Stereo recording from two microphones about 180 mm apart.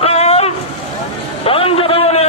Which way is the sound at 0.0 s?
35° left (ahead or behind).